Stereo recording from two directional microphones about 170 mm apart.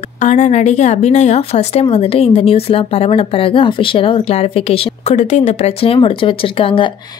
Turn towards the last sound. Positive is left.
turn(degrees=30)  # may be behind; listen again after turning